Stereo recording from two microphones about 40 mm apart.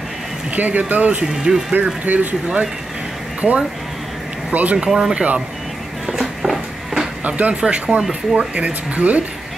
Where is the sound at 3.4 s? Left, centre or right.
Right.